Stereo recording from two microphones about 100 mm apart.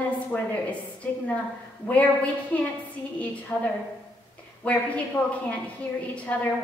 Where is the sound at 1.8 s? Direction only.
15° left (ahead or behind).